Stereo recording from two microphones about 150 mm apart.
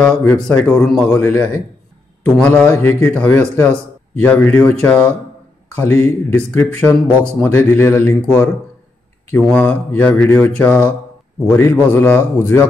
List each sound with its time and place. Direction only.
0.0 s speech: 5° left (ahead or behind)
6.3 s speech: 10° left (ahead or behind)